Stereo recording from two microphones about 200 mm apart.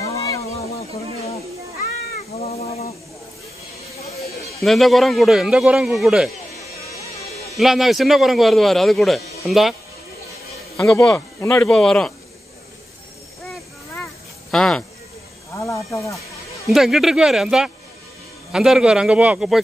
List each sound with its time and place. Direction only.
0.0 s a sound: 15° left (ahead or behind)
2.4 s snake: 30° left (ahead or behind)
4.6 s a man's voice: centre (ahead or behind)
7.5 s a man's voice: centre (ahead or behind)
10.9 s a man's voice: 5° left (ahead or behind)
14.5 s a man's voice: 5° left (ahead or behind)
15.5 s speech: 15° left (ahead or behind)
16.6 s a man's voice: centre (ahead or behind)